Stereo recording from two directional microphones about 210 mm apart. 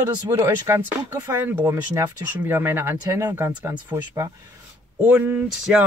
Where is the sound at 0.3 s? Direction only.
15° right (ahead or behind).